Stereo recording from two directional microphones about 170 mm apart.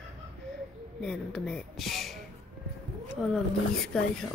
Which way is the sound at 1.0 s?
5° left (ahead or behind).